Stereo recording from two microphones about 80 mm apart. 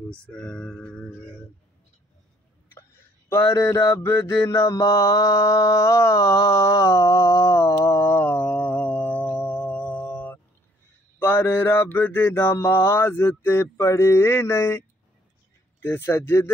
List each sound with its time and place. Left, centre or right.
0.2 s music: centre
3.3 s mantra: left